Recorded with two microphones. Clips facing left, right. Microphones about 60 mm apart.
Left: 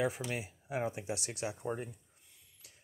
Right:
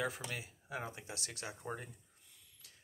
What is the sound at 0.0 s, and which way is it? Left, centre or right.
Speech, left.